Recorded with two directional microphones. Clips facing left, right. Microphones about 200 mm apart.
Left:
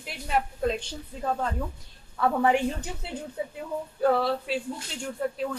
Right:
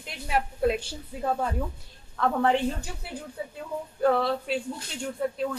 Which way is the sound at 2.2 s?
10° left (ahead or behind).